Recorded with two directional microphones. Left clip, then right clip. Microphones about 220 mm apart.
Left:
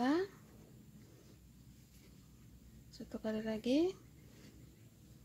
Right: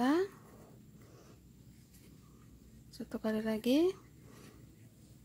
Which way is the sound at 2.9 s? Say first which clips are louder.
Right 4 dB; 15° right (ahead or behind).